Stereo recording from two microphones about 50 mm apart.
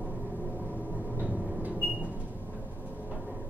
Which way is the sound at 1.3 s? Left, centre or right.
Centre.